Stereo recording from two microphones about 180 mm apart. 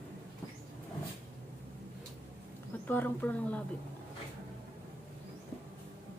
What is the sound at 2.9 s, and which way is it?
Speech, 10° left (ahead or behind).